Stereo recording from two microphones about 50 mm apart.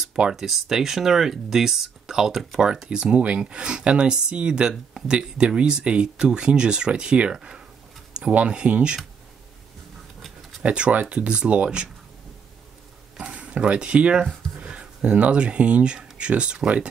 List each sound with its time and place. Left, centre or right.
0.0 s speech: centre
8.1 s a sound: centre
8.5 s speech: right
10.6 s speech: right
13.2 s speech: right
14.6 s a sound: right
15.1 s speech: right